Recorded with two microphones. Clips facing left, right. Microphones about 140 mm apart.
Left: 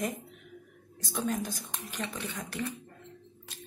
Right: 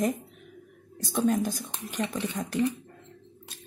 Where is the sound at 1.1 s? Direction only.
45° right (ahead or behind).